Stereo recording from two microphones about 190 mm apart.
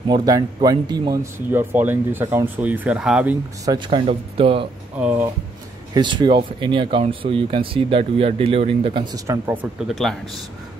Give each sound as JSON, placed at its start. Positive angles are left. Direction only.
{"t": 0.1, "sound": "speech", "side_deg": -20}
{"t": 3.6, "sound": "speech", "side_deg": -25}
{"t": 4.9, "sound": "speech", "side_deg": -10}
{"t": 5.9, "sound": "speech", "side_deg": -25}
{"t": 9.1, "sound": "speech", "side_deg": -15}